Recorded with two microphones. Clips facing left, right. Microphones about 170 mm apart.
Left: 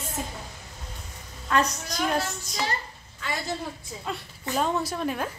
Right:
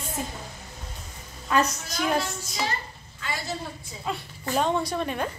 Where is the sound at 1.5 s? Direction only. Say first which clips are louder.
Right 1 dB; 5° right (ahead or behind).